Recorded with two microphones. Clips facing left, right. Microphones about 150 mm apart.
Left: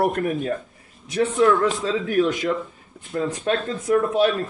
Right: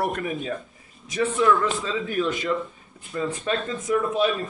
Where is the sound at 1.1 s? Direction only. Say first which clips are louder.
Left 3 dB; centre (ahead or behind).